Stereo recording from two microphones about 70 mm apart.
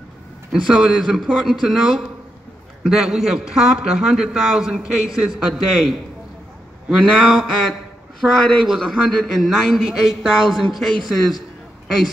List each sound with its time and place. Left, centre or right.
0.5 s a man's voice: centre
7.1 s a man's voice: centre